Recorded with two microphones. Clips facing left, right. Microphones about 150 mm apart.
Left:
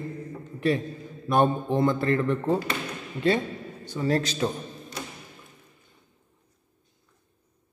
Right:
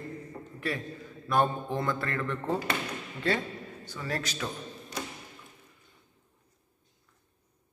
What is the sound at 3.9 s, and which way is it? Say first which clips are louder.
Mantra: left 10 dB; 25° left (ahead or behind).